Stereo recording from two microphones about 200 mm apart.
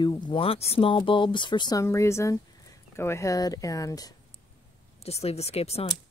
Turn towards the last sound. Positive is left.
turn(degrees=30)  # may be behind; listen again after turning